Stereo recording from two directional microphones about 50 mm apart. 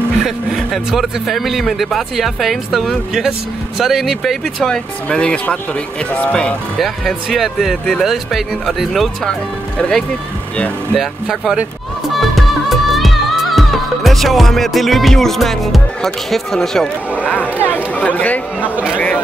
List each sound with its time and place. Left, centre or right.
0.2 s speech: centre
4.6 s speech: centre
7.2 s speech: centre
9.3 s speech: centre
11.0 s speech: centre
12.2 s music: centre
17.1 s speech: left